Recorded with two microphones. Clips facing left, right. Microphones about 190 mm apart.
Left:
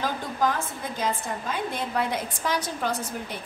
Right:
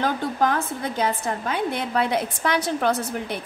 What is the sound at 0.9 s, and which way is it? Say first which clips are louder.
A woman's voice: right 3 dB; 70° right (ahead or behind).